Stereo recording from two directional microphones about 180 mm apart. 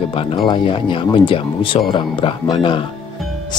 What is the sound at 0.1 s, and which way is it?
Speech, 30° left (ahead or behind).